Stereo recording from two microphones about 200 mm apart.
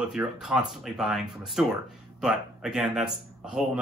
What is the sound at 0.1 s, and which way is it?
Speech, 5° right (ahead or behind).